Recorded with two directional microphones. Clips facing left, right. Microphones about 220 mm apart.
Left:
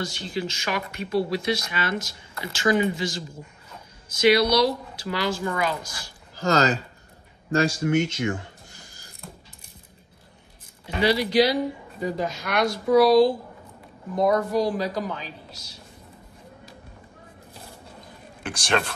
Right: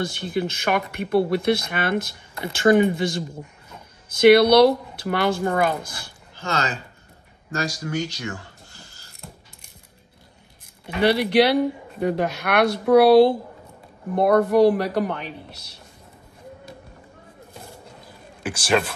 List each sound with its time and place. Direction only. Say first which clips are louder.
0.0 s speech: right 4 dB; 55° right (ahead or behind)
6.3 s speech: left 5 dB; 35° left (ahead or behind); by 9.1 s 15° left (ahead or behind)
11.0 s speech: right 2 dB; 60° right (ahead or behind)
18.4 s speech: right 4 dB; 5° right (ahead or behind)